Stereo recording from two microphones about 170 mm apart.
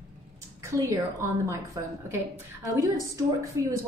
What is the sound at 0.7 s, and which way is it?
A woman's voice, 15° right (ahead or behind).